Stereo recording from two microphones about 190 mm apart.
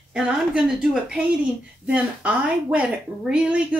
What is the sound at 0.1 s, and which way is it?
A woman's voice, 5° right (ahead or behind).